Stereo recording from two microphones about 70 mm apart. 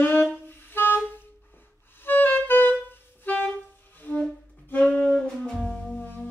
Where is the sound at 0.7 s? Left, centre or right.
Left.